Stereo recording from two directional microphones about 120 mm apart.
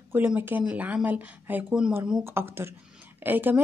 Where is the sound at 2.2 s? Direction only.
20° right (ahead or behind).